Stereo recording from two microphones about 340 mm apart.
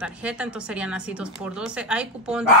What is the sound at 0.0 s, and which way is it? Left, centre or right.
Speech, centre.